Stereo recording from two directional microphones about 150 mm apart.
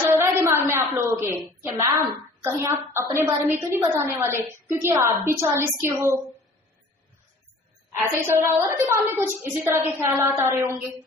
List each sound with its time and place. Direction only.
0.0 s a sound: 15° right (ahead or behind)
0.7 s a woman's voice: 15° right (ahead or behind)
8.3 s a woman's voice: 15° right (ahead or behind)